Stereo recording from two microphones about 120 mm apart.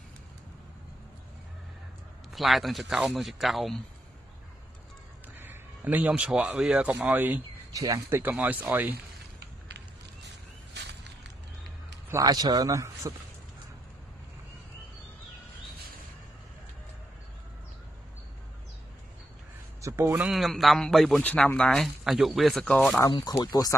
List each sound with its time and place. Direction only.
2.3 s speech: centre (ahead or behind)
5.4 s a man's voice: 15° right (ahead or behind)
7.7 s a man's voice: 30° right (ahead or behind)
8.2 s speech: 15° right (ahead or behind)
12.1 s a man's voice: 30° right (ahead or behind)
19.8 s a man's voice: 25° right (ahead or behind)
20.2 s speech: centre (ahead or behind)
21.2 s speech: 15° left (ahead or behind)
23.4 s speech: 30° left (ahead or behind)